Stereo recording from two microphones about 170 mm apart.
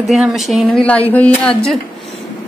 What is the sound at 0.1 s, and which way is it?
A woman's voice, centre (ahead or behind).